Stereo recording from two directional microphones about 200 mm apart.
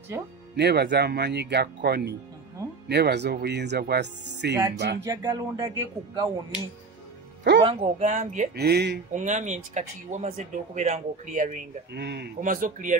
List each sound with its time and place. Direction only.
0.6 s speech: 55° right (ahead or behind)
5.0 s speech: 15° right (ahead or behind)
7.6 s speech: 30° right (ahead or behind)
8.5 s speech: 55° right (ahead or behind)
9.1 s speech: 40° right (ahead or behind)
11.9 s speech: 55° right (ahead or behind)
12.4 s speech: 45° right (ahead or behind)